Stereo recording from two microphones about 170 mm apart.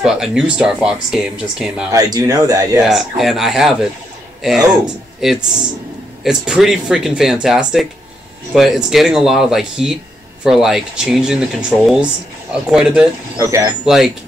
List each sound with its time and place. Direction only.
0.0 s speech: 5° right (ahead or behind)
1.9 s speech: 20° right (ahead or behind)
2.9 s speech: centre (ahead or behind)